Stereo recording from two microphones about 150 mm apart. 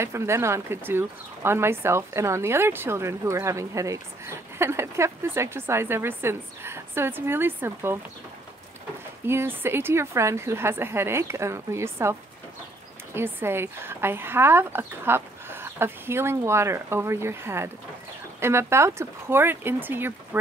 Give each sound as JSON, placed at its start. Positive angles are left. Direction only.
{"t": 0.0, "sound": "speech", "side_deg": -20}
{"t": 9.2, "sound": "speech", "side_deg": -15}